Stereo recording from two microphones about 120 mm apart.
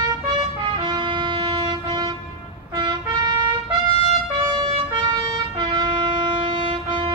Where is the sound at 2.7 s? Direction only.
40° right (ahead or behind).